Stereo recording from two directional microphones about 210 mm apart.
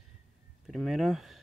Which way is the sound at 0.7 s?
Centre (ahead or behind).